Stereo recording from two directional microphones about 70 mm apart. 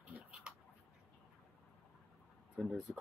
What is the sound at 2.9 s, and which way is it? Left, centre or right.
Speech, centre.